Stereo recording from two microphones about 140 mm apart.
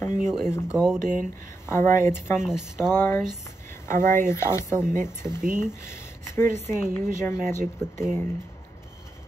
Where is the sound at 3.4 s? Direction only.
20° left (ahead or behind).